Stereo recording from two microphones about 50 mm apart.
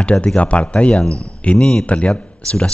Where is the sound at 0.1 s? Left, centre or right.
Centre.